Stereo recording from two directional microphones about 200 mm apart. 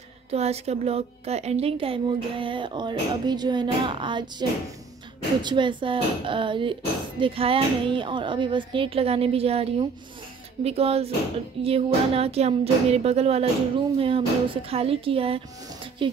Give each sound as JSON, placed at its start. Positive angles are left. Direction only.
{"t": 0.3, "sound": "speech", "side_deg": -30}
{"t": 10.6, "sound": "a sound", "side_deg": -30}
{"t": 13.9, "sound": "speech", "side_deg": -25}